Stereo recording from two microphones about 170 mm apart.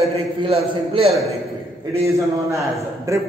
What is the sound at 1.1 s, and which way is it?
Speech, centre (ahead or behind).